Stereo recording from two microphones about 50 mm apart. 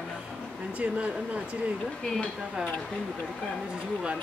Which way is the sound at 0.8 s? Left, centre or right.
Right.